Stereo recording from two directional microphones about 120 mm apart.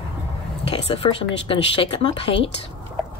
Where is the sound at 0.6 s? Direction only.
50° left (ahead or behind).